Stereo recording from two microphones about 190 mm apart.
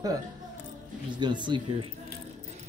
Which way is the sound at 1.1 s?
25° right (ahead or behind).